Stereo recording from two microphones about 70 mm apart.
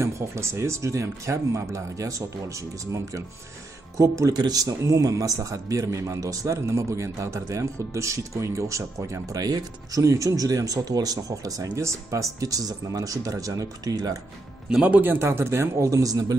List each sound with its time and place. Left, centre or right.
0.0 s a man's voice: right
4.3 s a man's voice: right
14.9 s speech: right
15.9 s speech: right